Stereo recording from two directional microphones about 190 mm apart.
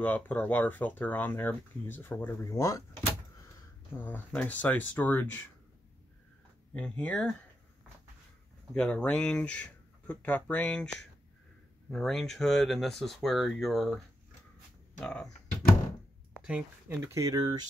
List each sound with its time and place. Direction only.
0.0 s speech: 10° left (ahead or behind)
3.9 s speech: 10° left (ahead or behind)
6.7 s speech: 5° left (ahead or behind)
8.7 s speech: 5° left (ahead or behind)
15.0 s speech: 5° left (ahead or behind)
16.3 s speech: 5° right (ahead or behind)